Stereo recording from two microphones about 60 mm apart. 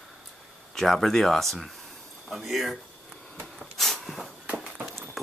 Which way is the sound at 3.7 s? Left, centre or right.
Centre.